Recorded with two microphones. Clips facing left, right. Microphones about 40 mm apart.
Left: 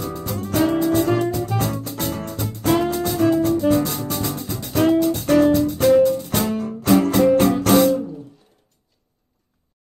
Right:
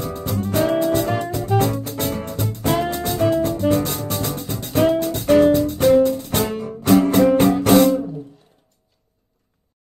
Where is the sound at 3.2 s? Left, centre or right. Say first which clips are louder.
Left 1 dB; right.